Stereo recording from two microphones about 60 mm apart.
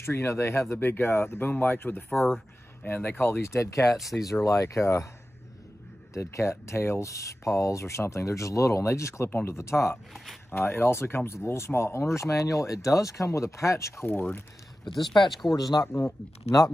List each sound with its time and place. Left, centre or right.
0.0 s speech: left
0.7 s speech: left
2.0 s speech: centre
2.8 s speech: left
3.9 s speech: centre
4.4 s speech: left
6.1 s speech: left
10.5 s speech: left
14.0 s speech: left
15.0 s speech: centre
15.5 s speech: left
15.9 s speech: left